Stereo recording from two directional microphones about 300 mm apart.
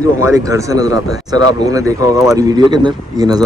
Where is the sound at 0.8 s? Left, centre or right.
Left.